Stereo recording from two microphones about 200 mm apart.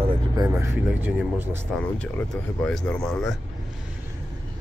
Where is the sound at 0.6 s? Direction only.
10° right (ahead or behind).